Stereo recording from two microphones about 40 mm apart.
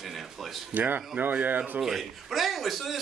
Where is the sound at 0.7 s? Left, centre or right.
Right.